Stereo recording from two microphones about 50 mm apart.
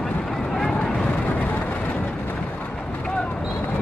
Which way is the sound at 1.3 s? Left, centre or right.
Left.